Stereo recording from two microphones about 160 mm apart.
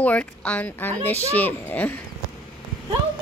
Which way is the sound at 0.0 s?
10° left (ahead or behind).